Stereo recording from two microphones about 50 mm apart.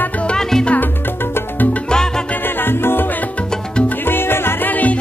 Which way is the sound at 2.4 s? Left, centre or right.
Left.